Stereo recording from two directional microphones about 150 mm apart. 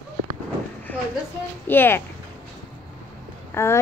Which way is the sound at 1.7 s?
15° left (ahead or behind).